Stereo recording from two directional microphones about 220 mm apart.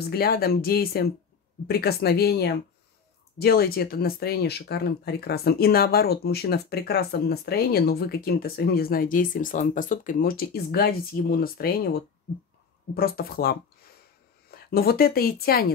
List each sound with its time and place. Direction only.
0.0 s speech: 45° left (ahead or behind)